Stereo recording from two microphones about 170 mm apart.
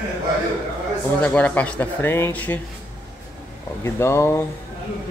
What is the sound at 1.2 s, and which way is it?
Speech, 10° left (ahead or behind).